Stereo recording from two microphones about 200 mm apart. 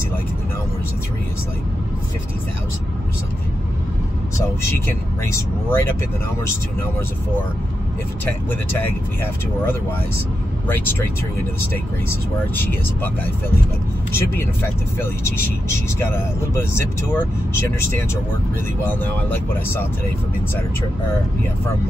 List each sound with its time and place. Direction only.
4.8 s speech: 10° left (ahead or behind)
8.3 s speech: 10° left (ahead or behind)
12.1 s speech: 10° left (ahead or behind)
16.5 s speech: 10° left (ahead or behind)
19.3 s speech: 10° left (ahead or behind)